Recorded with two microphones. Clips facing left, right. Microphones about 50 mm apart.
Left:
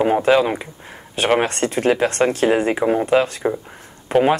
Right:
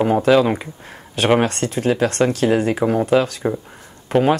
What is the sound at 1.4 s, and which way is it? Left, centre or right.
Speech, left.